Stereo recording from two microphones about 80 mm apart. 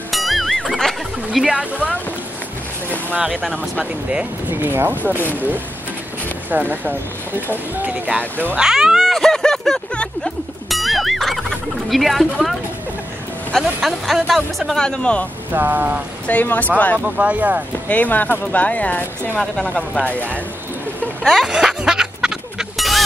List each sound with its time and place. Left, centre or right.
0.1 s music: centre
1.4 s speech: centre
4.5 s speech: right
6.5 s speech: right
8.5 s speech: centre
9.0 s music: centre
11.9 s speech: centre
15.5 s speech: right
16.3 s speech: centre
17.0 s speech: centre
17.8 s speech: centre
19.6 s speech: centre
21.2 s a sound: centre